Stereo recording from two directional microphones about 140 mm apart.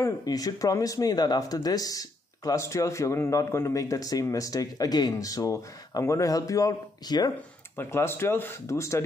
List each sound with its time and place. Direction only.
0.0 s speech: 25° left (ahead or behind)
7.7 s speech: 15° left (ahead or behind)